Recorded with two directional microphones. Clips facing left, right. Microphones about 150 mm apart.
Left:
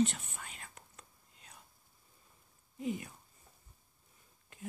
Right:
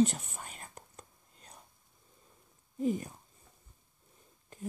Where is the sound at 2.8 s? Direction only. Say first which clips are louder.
Right 6 dB; 40° right (ahead or behind).